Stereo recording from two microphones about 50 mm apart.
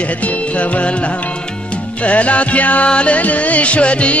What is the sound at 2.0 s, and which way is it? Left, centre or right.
Music, left.